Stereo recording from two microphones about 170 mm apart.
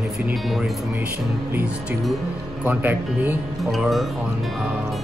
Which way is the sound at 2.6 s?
10° right (ahead or behind).